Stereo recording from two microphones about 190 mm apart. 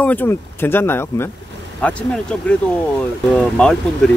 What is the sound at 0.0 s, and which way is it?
Speech, 10° left (ahead or behind).